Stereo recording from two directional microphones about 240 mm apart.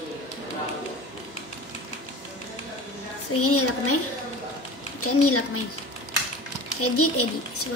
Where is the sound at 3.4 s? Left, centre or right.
Left.